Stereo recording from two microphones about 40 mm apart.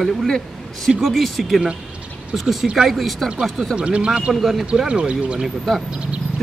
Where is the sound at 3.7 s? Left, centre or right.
Right.